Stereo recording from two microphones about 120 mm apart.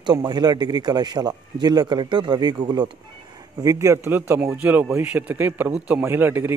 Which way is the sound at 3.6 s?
25° right (ahead or behind).